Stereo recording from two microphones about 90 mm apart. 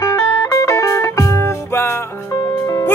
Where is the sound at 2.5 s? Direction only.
45° left (ahead or behind).